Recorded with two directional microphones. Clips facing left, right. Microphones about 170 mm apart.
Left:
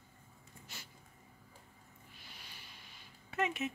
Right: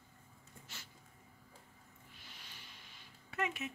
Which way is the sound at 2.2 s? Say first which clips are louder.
Left 1 dB; 10° left (ahead or behind).